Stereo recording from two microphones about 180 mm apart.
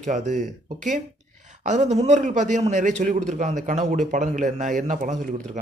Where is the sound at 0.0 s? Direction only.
40° right (ahead or behind).